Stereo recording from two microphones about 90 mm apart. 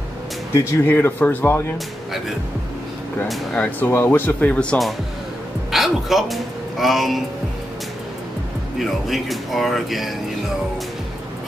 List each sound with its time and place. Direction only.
0.6 s speech: 25° left (ahead or behind)
3.8 s speech: 25° left (ahead or behind)
5.7 s a sound: centre (ahead or behind)
8.7 s speech: centre (ahead or behind)